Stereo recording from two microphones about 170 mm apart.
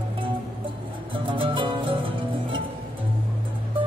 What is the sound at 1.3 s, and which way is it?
Music, 30° right (ahead or behind).